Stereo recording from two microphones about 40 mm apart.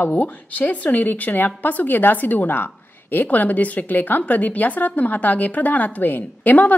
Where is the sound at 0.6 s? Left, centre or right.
Left.